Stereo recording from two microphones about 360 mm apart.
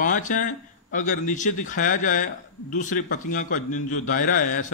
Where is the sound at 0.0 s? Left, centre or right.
Left.